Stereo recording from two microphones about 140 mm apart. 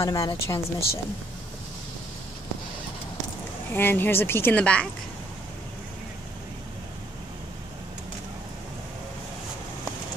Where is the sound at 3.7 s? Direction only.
15° left (ahead or behind).